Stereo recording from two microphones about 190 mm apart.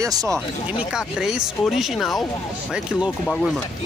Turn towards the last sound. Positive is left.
turn(degrees=5)  # may be behind; listen again after turning